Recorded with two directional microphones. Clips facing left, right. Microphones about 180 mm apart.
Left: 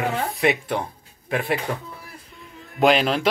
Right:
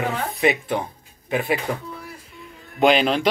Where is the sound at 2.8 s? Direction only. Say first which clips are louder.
Right 1 dB; centre (ahead or behind).